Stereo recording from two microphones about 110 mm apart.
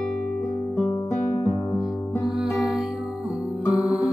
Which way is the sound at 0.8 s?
45° left (ahead or behind).